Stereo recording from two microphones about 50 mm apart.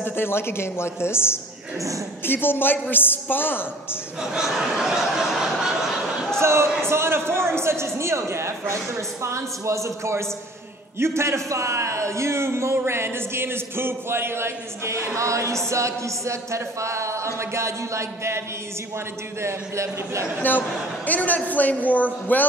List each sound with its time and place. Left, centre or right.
0.0 s a woman's voice: left
4.2 s speech: centre
4.6 s a sound: centre
6.4 s a man's voice: right
19.4 s speech: right
20.4 s a man's voice: left